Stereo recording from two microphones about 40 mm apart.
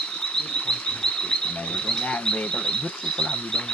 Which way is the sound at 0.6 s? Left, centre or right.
Left.